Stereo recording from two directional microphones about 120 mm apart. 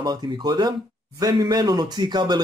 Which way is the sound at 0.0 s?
35° right (ahead or behind).